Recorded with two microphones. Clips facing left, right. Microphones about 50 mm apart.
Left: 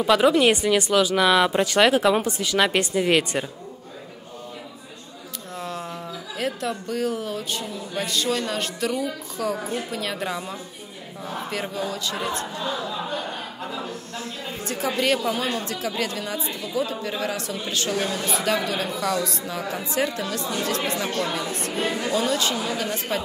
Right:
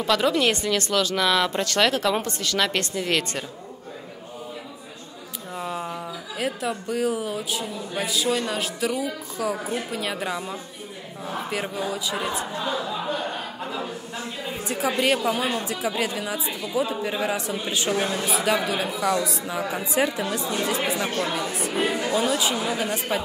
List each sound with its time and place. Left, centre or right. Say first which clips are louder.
0.0 s speech: left 4 dB; centre
5.6 s speech: right 2 dB; centre
16.7 s speech: right 2 dB; centre